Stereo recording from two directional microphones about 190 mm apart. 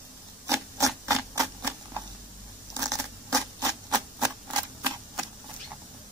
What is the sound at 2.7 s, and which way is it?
Scratch, 15° right (ahead or behind).